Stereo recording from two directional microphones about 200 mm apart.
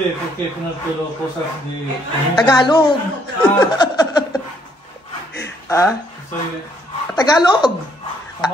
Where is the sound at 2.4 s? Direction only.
20° left (ahead or behind).